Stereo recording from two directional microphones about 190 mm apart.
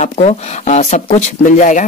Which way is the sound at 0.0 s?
35° left (ahead or behind).